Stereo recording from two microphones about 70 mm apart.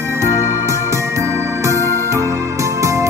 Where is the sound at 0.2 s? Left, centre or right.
Right.